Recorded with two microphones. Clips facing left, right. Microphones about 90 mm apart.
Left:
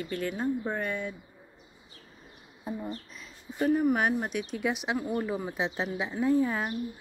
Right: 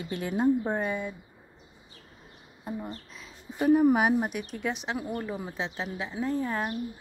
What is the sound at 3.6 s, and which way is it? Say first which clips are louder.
Speech: right 4 dB; 10° right (ahead or behind).